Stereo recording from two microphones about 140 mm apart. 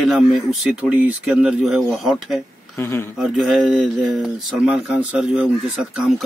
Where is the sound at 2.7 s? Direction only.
15° left (ahead or behind).